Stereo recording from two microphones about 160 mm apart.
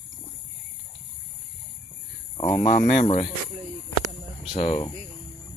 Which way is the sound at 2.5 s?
40° left (ahead or behind).